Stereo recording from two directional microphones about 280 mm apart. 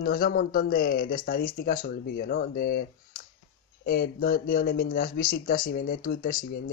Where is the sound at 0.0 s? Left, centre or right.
Left.